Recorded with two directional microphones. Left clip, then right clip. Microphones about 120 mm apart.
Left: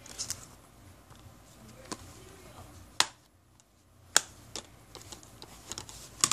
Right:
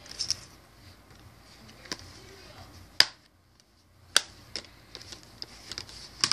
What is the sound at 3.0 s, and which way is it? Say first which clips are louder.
Finger snapping: right 6 dB; 35° left (ahead or behind).